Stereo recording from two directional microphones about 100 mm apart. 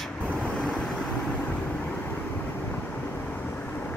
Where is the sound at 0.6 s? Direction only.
5° left (ahead or behind).